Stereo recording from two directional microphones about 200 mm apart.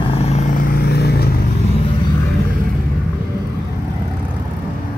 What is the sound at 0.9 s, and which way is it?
Vehicle, 50° left (ahead or behind).